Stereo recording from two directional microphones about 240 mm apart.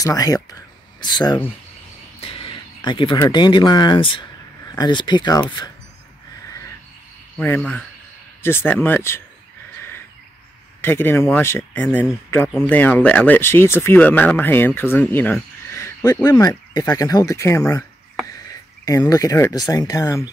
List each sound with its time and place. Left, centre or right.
0.0 s speech: centre
7.3 s speech: centre
10.8 s speech: centre
18.9 s speech: centre